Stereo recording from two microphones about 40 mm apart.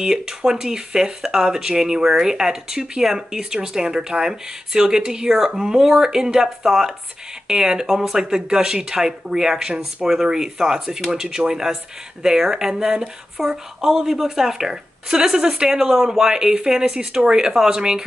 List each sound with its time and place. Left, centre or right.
0.0 s speech: centre
7.4 s speech: centre